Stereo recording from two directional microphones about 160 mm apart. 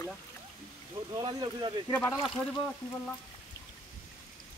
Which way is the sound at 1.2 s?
30° right (ahead or behind).